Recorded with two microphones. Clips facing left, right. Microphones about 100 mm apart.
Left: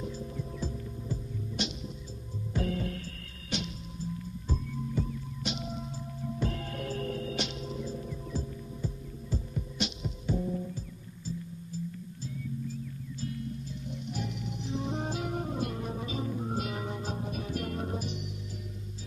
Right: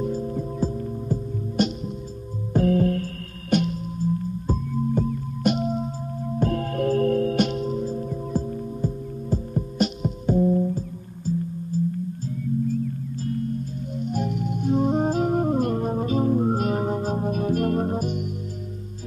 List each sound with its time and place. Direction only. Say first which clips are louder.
0.0 s music: right 11 dB; 45° right (ahead or behind)
2.5 s singing bowl: right 13 dB; 45° right (ahead or behind)
11.3 s music: right 13 dB; 45° right (ahead or behind)